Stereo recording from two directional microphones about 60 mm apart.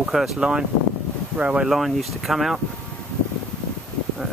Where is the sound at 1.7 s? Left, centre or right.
Centre.